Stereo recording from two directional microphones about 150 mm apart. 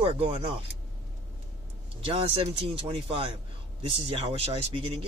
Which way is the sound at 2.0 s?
40° right (ahead or behind).